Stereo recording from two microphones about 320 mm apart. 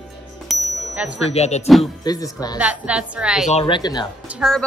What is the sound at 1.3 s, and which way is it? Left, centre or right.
Music, centre.